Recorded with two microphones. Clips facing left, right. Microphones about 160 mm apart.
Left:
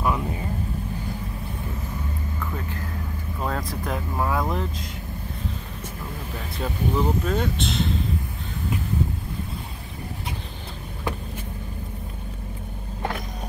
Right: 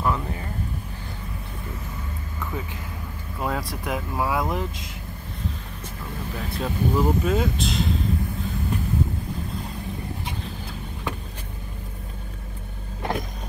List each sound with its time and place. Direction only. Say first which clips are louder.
0.0 s vehicle: left 1 dB; 15° left (ahead or behind)
3.3 s vehicle: right 1 dB; 5° right (ahead or behind)
3.8 s speech: right 1 dB; 5° right (ahead or behind)
6.3 s speech: right 2 dB; 5° right (ahead or behind)